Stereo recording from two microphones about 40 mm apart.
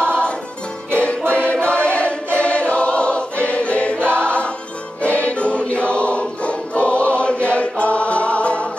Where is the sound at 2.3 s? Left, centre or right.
Left.